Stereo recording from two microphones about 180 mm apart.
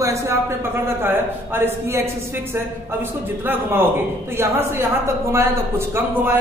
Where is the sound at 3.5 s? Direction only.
10° right (ahead or behind).